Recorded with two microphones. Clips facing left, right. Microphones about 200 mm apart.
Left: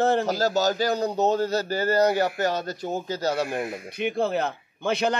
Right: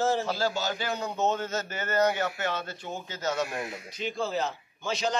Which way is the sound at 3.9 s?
60° left (ahead or behind).